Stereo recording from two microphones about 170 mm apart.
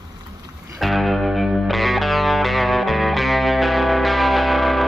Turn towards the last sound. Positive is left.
turn(degrees=0)  # may be behind; listen again after turning